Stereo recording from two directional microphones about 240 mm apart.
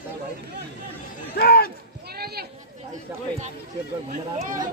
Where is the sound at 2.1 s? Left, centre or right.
Right.